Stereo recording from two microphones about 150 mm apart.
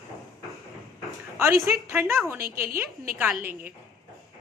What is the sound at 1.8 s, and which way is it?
Speech, 20° right (ahead or behind).